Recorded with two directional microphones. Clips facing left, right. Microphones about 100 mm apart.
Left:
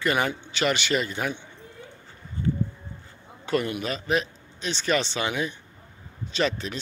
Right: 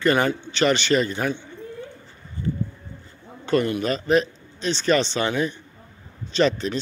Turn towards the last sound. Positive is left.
turn(degrees=5)  # may be behind; listen again after turning